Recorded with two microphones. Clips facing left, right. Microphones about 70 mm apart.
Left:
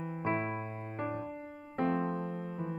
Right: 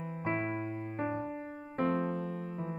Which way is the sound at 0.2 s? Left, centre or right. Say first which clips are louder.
Even; left.